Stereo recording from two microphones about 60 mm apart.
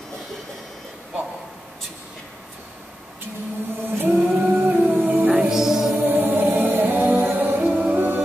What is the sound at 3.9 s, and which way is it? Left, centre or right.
Music, right.